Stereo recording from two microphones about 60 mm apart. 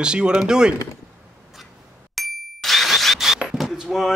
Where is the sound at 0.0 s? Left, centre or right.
Centre.